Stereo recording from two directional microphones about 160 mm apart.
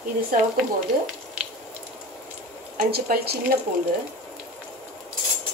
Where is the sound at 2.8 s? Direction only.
75° right (ahead or behind).